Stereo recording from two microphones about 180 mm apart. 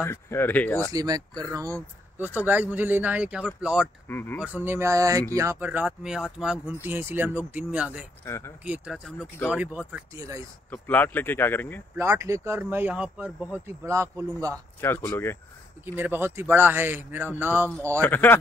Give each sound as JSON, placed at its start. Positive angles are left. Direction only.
{"t": 0.0, "sound": "speech", "side_deg": 15}
{"t": 0.9, "sound": "speech", "side_deg": -20}
{"t": 4.1, "sound": "speech", "side_deg": 10}
{"t": 4.4, "sound": "speech", "side_deg": -10}
{"t": 8.3, "sound": "speech", "side_deg": 15}
{"t": 8.6, "sound": "speech", "side_deg": -5}
{"t": 10.7, "sound": "speech", "side_deg": 10}
{"t": 12.0, "sound": "speech", "side_deg": -15}
{"t": 14.8, "sound": "speech", "side_deg": 10}
{"t": 15.8, "sound": "speech", "side_deg": -10}
{"t": 18.0, "sound": "speech", "side_deg": 10}